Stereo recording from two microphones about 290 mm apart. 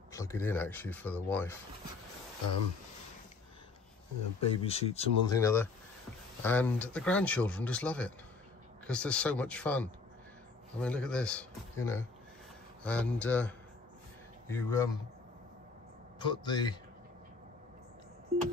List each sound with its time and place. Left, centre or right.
0.1 s speech: centre
4.4 s speech: left
16.2 s speech: centre